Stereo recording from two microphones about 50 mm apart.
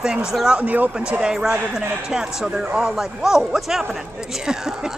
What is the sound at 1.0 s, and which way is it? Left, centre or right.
Speech, centre.